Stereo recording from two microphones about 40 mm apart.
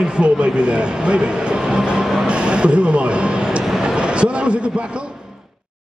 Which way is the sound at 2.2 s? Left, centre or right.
Right.